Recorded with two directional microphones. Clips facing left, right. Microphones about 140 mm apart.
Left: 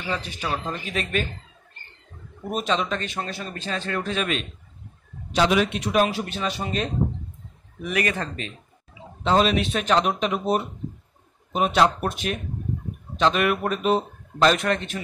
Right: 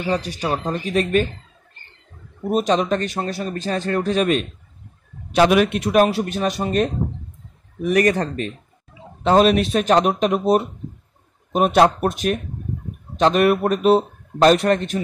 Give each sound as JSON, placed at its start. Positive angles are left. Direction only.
{"t": 0.0, "sound": "a man's voice", "side_deg": -40}
{"t": 2.5, "sound": "a man's voice", "side_deg": -40}
{"t": 5.3, "sound": "a man's voice", "side_deg": -55}
{"t": 11.5, "sound": "a man's voice", "side_deg": -50}